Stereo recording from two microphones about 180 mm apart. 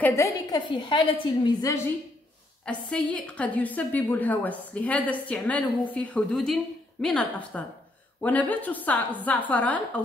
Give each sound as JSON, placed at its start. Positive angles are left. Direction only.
{"t": 0.0, "sound": "a woman's voice", "side_deg": 15}
{"t": 2.6, "sound": "a woman's voice", "side_deg": 5}